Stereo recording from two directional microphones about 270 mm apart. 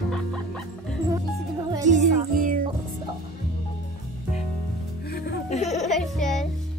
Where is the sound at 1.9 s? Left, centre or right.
Right.